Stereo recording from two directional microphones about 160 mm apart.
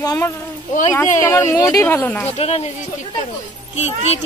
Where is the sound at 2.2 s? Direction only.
40° left (ahead or behind).